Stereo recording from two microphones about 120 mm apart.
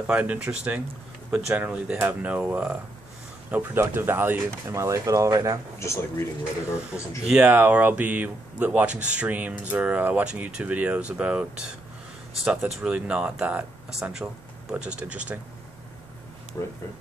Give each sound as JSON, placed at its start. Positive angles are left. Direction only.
{"t": 0.0, "sound": "speech", "side_deg": -10}
{"t": 5.8, "sound": "speech", "side_deg": 25}
{"t": 6.9, "sound": "speech", "side_deg": -5}
{"t": 16.6, "sound": "speech", "side_deg": 20}